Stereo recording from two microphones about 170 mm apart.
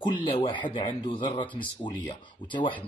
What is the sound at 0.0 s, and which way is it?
Speech, 30° left (ahead or behind).